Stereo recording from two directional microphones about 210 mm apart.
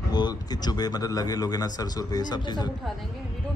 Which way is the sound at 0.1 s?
20° left (ahead or behind).